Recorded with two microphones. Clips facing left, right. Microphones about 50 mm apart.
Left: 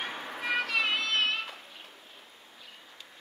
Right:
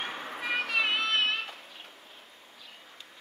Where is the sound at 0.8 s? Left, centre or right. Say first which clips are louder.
Right 1 dB; right.